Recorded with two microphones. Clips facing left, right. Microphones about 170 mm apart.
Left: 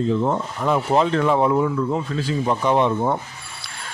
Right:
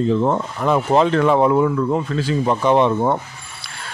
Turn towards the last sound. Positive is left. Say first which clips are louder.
# right 3 dB
turn(degrees=-70)  # may be behind; listen again after turning